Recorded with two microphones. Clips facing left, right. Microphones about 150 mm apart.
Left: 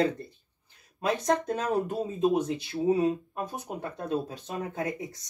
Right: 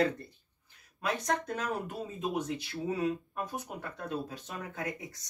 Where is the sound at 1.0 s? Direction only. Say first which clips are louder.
Left 6 dB; 25° left (ahead or behind).